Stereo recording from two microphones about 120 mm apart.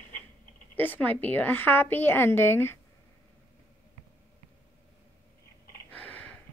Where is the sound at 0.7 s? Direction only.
15° left (ahead or behind).